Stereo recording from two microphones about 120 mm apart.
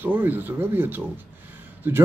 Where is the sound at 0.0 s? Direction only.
15° right (ahead or behind).